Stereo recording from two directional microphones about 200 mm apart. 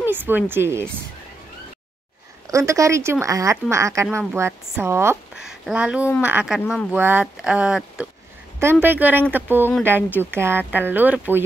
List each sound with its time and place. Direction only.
0.0 s speech: 10° right (ahead or behind)
2.4 s speech: 15° right (ahead or behind)